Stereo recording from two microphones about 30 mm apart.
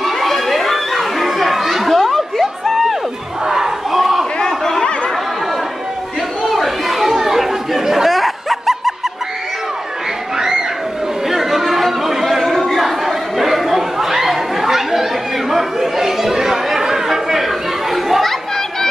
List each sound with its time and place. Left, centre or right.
0.0 s children playing: centre
3.4 s battle cry: centre
3.9 s a sound: centre
4.5 s chatter: centre
6.4 s chatter: centre
10.3 s a sound: right
11.2 s chatter: centre